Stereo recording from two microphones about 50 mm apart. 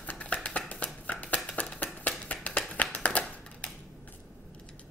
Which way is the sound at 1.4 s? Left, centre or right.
Left.